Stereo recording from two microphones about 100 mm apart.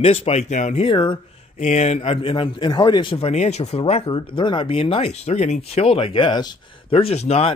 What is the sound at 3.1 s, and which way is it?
Speech, 90° left.